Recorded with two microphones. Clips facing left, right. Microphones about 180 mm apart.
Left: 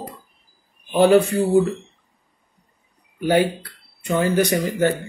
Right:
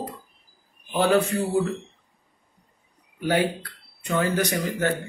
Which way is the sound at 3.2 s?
30° left (ahead or behind).